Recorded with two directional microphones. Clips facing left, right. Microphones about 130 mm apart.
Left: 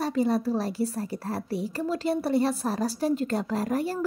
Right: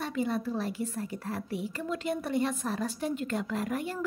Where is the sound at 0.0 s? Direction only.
35° left (ahead or behind).